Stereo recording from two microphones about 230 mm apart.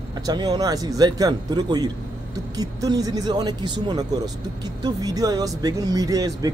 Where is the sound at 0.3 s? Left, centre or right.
Centre.